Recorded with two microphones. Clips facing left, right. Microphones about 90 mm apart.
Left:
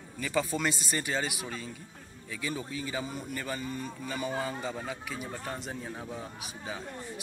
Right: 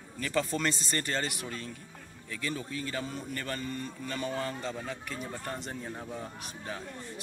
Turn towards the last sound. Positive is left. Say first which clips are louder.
# left 1 dB
turn(degrees=10)  # may be behind; listen again after turning